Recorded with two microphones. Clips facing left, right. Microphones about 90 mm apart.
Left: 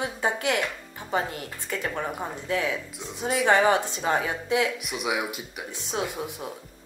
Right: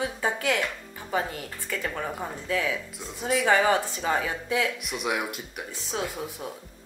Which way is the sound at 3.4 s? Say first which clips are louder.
Left 2 dB; 20° left (ahead or behind).